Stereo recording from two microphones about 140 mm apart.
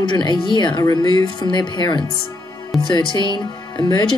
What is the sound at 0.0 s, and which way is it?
Speech, 35° left (ahead or behind).